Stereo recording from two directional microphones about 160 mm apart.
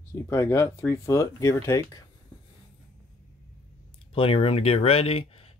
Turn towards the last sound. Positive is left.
turn(degrees=35)  # may be behind; listen again after turning